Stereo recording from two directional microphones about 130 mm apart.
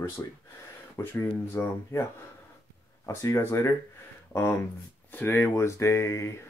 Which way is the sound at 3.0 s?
20° left (ahead or behind).